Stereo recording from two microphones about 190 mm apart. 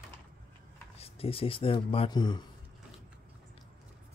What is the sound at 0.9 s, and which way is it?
Speech, 30° left (ahead or behind).